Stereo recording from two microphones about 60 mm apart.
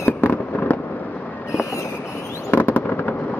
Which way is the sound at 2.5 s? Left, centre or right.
Left.